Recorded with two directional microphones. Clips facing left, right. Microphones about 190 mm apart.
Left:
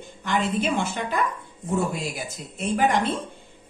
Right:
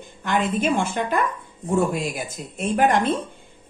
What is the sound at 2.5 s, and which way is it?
Speech, 50° right (ahead or behind).